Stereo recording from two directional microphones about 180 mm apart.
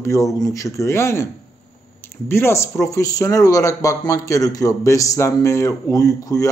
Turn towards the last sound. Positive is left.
turn(degrees=20)  # may be behind; listen again after turning